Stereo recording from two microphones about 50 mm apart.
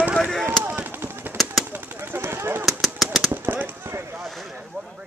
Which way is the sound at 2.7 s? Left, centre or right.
Centre.